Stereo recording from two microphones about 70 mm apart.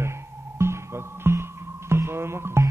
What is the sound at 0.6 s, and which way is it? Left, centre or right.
Music, right.